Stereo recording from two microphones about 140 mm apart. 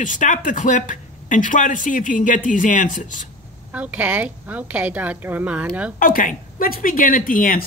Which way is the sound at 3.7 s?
10° right (ahead or behind).